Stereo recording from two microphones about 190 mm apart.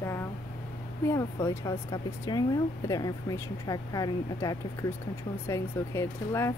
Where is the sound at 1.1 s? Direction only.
15° left (ahead or behind).